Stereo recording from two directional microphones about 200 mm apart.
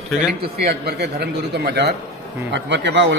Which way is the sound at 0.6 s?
55° right (ahead or behind).